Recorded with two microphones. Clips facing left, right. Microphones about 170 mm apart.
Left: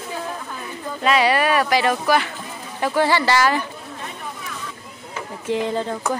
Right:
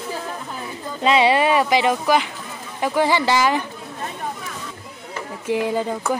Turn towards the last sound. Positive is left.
turn(degrees=-10)  # may be behind; listen again after turning